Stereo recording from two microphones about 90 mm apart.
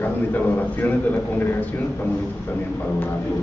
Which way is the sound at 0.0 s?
20° left (ahead or behind).